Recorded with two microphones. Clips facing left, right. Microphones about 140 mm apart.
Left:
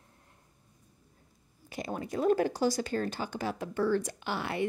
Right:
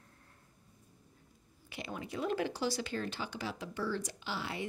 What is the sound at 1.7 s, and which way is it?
Speech, 40° left (ahead or behind).